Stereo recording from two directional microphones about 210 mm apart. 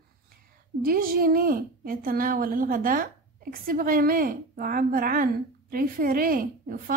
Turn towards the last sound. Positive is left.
turn(degrees=-40)  # may be behind; listen again after turning